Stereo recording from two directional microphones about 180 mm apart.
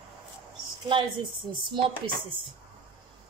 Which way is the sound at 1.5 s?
25° right (ahead or behind).